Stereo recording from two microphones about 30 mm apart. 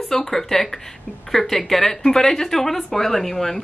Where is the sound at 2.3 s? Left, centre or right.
Centre.